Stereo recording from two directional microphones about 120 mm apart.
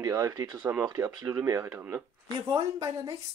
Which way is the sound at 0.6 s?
15° right (ahead or behind).